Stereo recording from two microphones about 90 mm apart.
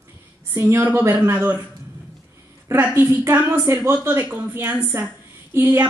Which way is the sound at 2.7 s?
25° right (ahead or behind).